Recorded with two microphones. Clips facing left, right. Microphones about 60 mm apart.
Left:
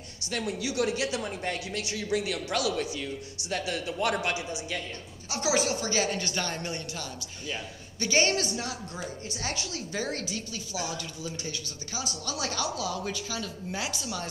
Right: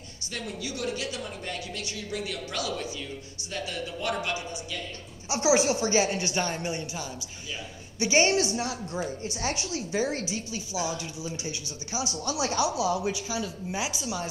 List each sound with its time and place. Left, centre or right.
0.9 s speech: left
5.3 s a woman's voice: right; by 14.3 s centre